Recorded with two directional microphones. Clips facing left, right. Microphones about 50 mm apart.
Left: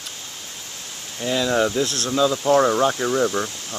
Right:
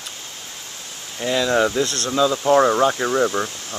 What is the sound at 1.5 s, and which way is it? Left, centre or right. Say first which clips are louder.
Speech: right 2 dB; centre.